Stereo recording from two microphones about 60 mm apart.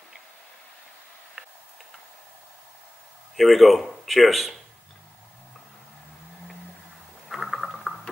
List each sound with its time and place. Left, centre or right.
1.4 s tick-tock: centre
3.3 s speech: centre
7.2 s a sound: centre